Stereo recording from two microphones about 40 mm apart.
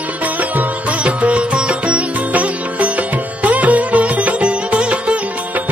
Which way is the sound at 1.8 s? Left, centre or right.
Right.